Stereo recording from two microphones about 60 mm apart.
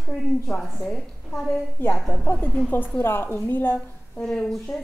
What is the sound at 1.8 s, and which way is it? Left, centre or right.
A woman's voice, left.